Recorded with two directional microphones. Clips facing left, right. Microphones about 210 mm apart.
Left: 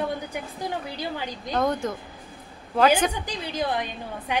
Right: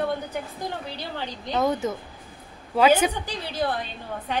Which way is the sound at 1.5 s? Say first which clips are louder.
Right 1 dB; 5° right (ahead or behind).